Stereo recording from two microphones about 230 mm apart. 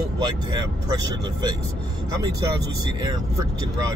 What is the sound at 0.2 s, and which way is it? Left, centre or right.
Speech, centre.